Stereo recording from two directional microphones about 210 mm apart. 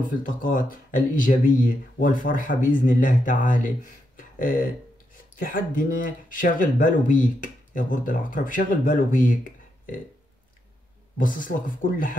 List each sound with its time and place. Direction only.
0.0 s speech: 40° left (ahead or behind)
11.1 s speech: 40° left (ahead or behind)